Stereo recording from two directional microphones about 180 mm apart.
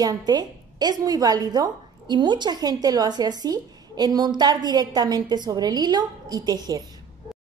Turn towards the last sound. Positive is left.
turn(degrees=-20)  # may be behind; listen again after turning